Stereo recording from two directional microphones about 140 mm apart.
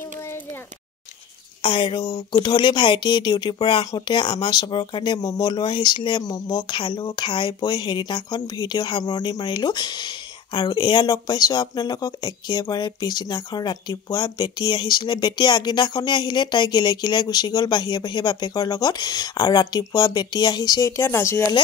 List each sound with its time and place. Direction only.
1.6 s speech: 40° left (ahead or behind); by 21.5 s 20° left (ahead or behind)